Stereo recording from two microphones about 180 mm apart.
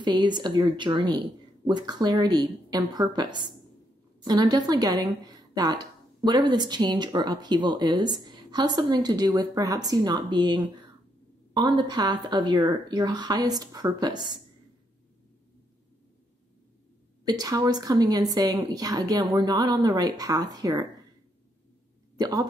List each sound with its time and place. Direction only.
0.0 s a woman's voice: 25° right (ahead or behind)
17.2 s speech: 20° right (ahead or behind)
22.1 s speech: 20° right (ahead or behind)